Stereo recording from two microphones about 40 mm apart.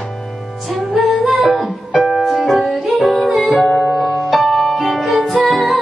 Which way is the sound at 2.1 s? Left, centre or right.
Centre.